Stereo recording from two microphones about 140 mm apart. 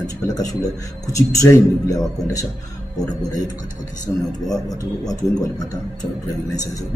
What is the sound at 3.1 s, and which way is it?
Speech, 25° left (ahead or behind).